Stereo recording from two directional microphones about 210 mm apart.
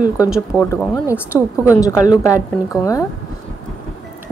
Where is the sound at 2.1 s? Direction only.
15° left (ahead or behind).